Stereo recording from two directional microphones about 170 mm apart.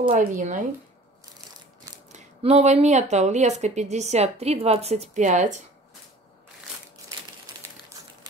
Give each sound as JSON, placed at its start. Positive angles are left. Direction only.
{"t": 0.1, "sound": "speech", "side_deg": -50}
{"t": 2.1, "sound": "a woman's voice", "side_deg": -40}